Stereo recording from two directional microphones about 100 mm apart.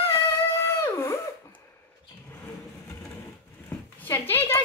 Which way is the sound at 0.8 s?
30° left (ahead or behind).